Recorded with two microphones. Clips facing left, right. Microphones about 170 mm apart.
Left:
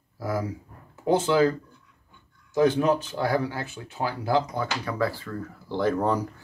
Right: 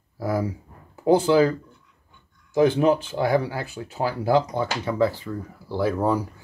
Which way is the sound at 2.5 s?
30° right (ahead or behind).